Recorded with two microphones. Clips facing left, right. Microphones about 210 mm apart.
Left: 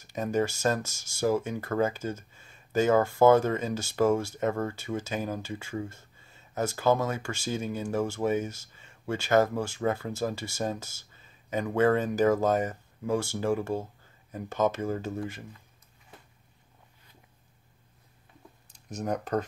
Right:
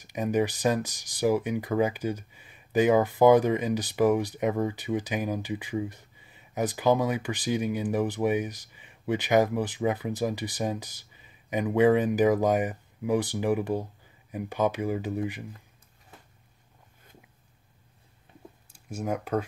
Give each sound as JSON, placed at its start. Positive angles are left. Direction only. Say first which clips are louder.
{"t": 0.0, "sound": "speech", "louder": "right 2 dB", "side_deg": -15}
{"t": 18.7, "sound": "speech", "louder": "right 1 dB", "side_deg": -10}